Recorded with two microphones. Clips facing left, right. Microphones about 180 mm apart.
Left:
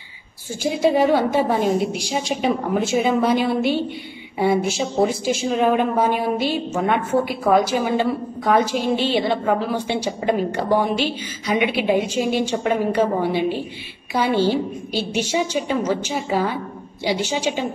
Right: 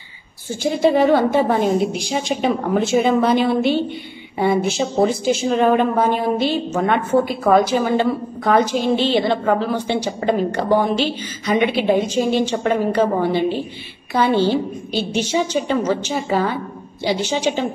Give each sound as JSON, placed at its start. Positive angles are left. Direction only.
{"t": 0.6, "sound": "a woman's voice", "side_deg": 5}